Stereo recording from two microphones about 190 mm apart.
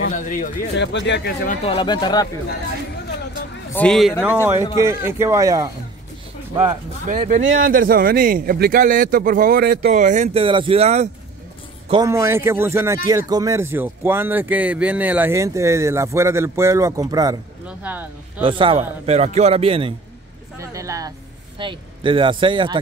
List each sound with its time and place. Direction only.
0.0 s speech: 45° left (ahead or behind)
0.7 s speech: 70° left (ahead or behind)
1.5 s speech: 30° left (ahead or behind)
3.7 s speech: 5° left (ahead or behind)
4.6 s speech: 25° left (ahead or behind)
4.8 s speech: 15° right (ahead or behind)
7.1 s a man's voice: 40° right (ahead or behind)
9.8 s a man's voice: 40° right (ahead or behind)
11.9 s speech: 20° right (ahead or behind)
17.6 s speech: 10° right (ahead or behind)
18.4 s a man's voice: 25° right (ahead or behind)
20.5 s speech: 15° right (ahead or behind)